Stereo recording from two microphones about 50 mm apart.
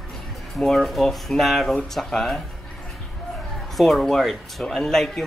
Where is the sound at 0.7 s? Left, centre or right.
Centre.